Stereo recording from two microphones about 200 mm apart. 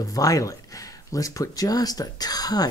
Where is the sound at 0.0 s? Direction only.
15° left (ahead or behind).